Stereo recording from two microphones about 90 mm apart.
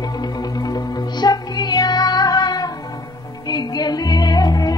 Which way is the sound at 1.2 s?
50° left (ahead or behind).